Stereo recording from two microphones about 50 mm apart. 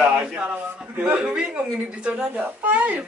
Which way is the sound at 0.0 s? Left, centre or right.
Right.